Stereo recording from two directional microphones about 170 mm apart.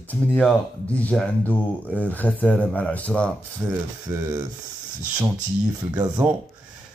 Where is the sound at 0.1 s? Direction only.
10° left (ahead or behind).